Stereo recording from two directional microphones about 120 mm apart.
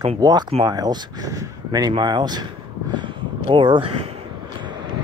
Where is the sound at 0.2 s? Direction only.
35° right (ahead or behind).